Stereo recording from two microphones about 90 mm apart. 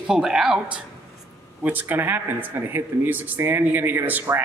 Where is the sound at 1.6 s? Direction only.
20° right (ahead or behind).